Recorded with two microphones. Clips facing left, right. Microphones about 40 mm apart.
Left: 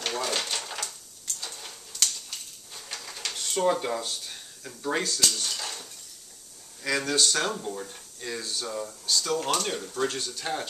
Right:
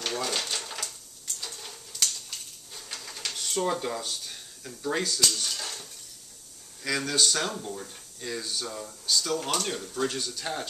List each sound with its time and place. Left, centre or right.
0.0 s a sound: centre
2.7 s drawer open or close: centre
6.8 s speech: centre